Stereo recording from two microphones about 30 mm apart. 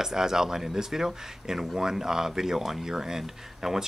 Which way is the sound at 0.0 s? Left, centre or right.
Centre.